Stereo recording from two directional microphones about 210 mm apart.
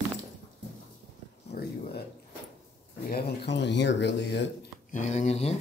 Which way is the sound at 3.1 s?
55° left (ahead or behind).